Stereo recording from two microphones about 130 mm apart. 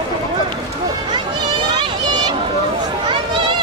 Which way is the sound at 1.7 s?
35° right (ahead or behind).